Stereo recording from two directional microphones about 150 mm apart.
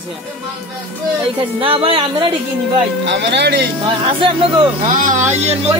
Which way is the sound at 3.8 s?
35° right (ahead or behind).